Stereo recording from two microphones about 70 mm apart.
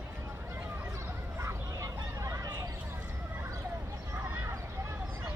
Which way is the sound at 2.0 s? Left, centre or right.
Right.